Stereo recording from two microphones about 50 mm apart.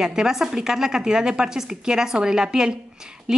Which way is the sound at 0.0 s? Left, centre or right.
Centre.